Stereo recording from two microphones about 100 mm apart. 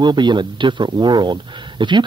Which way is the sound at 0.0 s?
50° right (ahead or behind).